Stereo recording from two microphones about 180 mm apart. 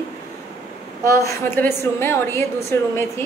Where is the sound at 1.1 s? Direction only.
15° left (ahead or behind).